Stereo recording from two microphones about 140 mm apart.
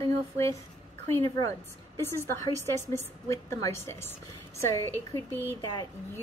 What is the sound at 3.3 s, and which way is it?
Speech, 20° left (ahead or behind).